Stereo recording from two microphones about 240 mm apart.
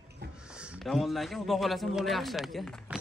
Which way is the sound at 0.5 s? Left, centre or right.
Centre.